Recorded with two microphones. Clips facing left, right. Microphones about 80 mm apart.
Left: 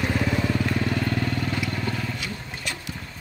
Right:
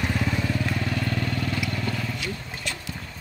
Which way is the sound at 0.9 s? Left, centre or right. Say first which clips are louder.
Left 2 dB; left.